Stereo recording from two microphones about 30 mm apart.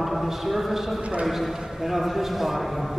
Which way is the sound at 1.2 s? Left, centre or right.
Centre.